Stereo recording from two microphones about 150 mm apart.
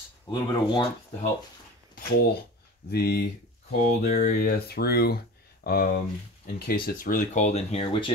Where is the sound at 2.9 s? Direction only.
90° left.